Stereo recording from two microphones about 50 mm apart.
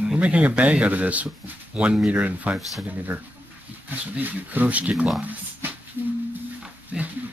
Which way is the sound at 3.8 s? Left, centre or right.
Right.